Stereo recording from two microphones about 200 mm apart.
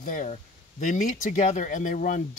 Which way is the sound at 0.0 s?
40° left (ahead or behind).